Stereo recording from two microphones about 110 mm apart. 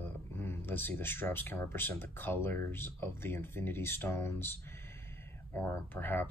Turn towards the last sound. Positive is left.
turn(degrees=20)  # may be behind; listen again after turning